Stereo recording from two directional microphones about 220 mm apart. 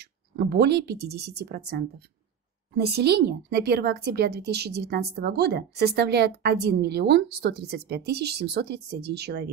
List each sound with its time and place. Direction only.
0.4 s a woman's voice: 50° right (ahead or behind)